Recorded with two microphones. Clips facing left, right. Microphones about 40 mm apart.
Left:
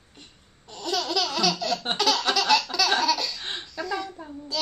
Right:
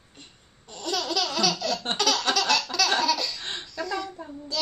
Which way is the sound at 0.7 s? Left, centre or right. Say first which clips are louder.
Left 1 dB; centre.